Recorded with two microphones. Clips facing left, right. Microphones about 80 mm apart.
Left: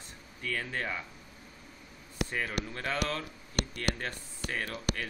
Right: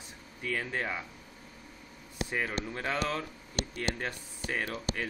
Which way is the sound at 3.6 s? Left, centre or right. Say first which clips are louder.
Left 2 dB; left.